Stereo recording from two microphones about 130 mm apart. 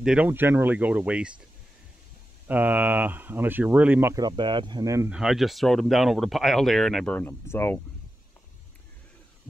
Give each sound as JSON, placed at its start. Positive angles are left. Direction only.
{"t": 0.0, "sound": "speech", "side_deg": -5}
{"t": 2.4, "sound": "speech", "side_deg": -15}
{"t": 4.1, "sound": "speech", "side_deg": -35}
{"t": 5.1, "sound": "speech", "side_deg": -5}